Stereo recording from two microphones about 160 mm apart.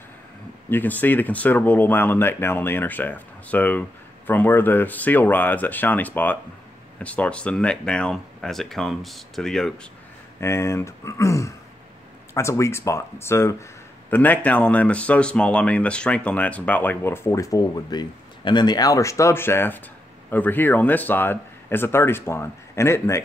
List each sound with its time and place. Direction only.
0.7 s speech: 10° left (ahead or behind)
10.4 s speech: 15° left (ahead or behind)